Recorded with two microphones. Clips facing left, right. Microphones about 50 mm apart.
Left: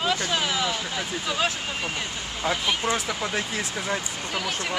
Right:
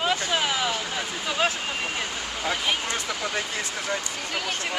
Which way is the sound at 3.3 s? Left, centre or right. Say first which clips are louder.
Left 1 dB; centre.